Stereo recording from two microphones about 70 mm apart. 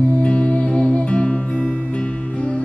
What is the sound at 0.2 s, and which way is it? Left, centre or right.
Music, centre.